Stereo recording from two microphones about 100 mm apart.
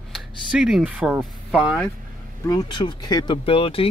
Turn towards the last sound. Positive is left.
turn(degrees=65)  # may be behind; listen again after turning